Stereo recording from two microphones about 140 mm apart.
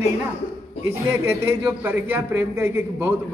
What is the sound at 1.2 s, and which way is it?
A man's voice, 15° right (ahead or behind).